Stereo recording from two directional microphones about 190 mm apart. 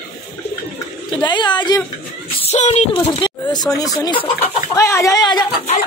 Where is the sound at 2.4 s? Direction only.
35° left (ahead or behind).